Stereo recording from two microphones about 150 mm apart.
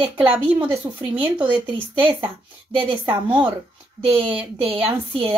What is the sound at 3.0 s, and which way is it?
Speech, 10° right (ahead or behind).